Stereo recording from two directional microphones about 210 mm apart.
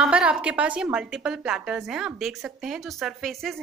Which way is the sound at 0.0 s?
5° right (ahead or behind).